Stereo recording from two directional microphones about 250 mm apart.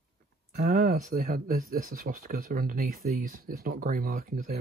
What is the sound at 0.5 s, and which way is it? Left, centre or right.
Speech, right.